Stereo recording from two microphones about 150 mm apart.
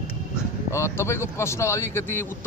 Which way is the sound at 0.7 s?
20° left (ahead or behind).